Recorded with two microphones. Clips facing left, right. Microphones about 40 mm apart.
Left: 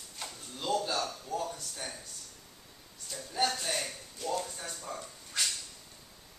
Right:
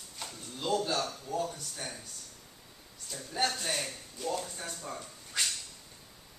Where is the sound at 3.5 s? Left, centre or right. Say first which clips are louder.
Even; centre.